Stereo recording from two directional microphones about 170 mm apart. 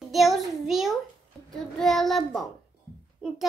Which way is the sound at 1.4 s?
5° left (ahead or behind).